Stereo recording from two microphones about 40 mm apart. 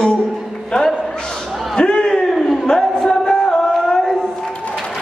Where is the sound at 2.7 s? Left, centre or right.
Centre.